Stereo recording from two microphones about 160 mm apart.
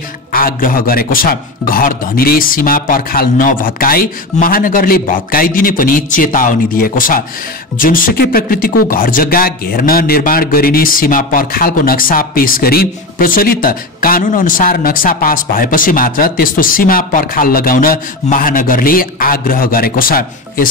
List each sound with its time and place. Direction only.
0.3 s speech: 65° left (ahead or behind)